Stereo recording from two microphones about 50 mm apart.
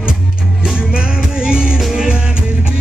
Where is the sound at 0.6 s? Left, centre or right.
Centre.